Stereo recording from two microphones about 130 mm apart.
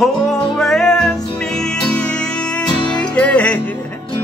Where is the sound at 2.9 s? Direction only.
10° left (ahead or behind).